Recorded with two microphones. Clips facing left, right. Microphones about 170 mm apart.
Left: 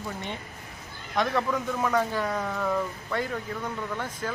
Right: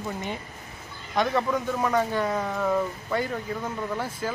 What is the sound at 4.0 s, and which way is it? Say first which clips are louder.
Speech: right 3 dB; 10° right (ahead or behind).